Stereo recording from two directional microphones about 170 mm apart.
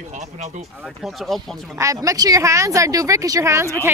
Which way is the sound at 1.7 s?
20° right (ahead or behind).